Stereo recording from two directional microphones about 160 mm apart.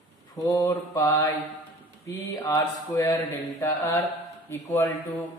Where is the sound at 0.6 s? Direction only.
15° left (ahead or behind).